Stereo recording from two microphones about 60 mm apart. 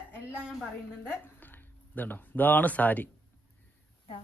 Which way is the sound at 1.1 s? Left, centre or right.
Left.